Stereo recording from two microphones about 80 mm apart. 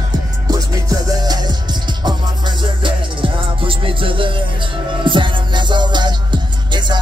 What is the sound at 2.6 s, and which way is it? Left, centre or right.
Music, right.